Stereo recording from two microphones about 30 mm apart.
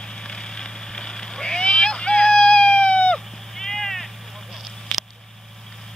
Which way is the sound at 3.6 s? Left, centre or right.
Centre.